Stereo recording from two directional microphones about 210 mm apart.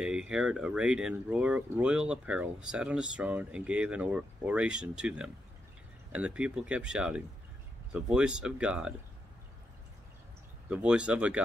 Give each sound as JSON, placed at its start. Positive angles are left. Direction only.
{"t": 0.0, "sound": "speech", "side_deg": -5}
{"t": 10.7, "sound": "speech", "side_deg": -5}